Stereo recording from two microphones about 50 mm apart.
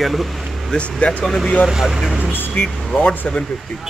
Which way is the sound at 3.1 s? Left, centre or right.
Left.